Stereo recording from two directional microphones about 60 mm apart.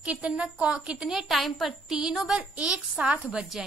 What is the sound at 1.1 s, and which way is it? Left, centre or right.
A woman's voice, centre.